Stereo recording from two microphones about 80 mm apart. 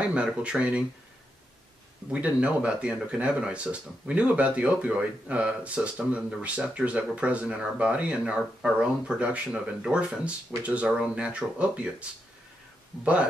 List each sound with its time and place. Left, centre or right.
0.0 s speech: centre
2.0 s speech: centre